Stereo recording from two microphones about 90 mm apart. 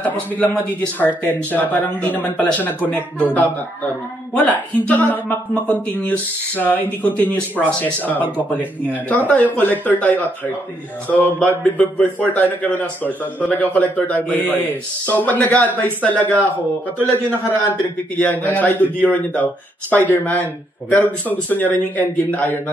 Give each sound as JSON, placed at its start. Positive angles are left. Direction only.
{"t": 0.0, "sound": "a man's voice", "side_deg": 20}
{"t": 18.1, "sound": "speech", "side_deg": 20}